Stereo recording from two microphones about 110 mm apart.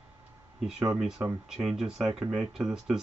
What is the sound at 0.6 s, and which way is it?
Speech, 5° right (ahead or behind).